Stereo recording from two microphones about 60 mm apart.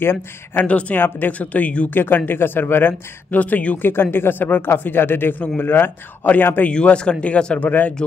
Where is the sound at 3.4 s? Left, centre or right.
Left.